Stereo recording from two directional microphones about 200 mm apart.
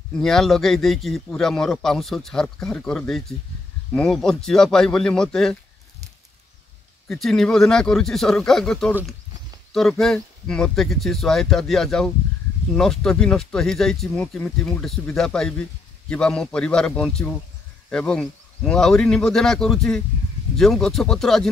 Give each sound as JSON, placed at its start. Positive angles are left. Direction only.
{"t": 0.2, "sound": "a man's voice", "side_deg": 0}
{"t": 7.1, "sound": "a man's voice", "side_deg": 0}